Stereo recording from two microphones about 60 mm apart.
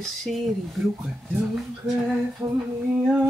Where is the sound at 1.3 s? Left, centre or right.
Right.